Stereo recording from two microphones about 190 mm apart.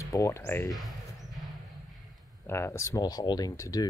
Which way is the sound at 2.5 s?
15° left (ahead or behind).